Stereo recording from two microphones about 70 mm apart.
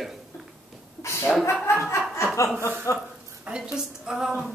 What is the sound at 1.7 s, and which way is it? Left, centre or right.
Chuckle, left.